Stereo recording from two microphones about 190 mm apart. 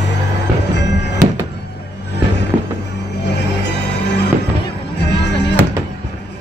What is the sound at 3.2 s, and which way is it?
Music, 65° left (ahead or behind).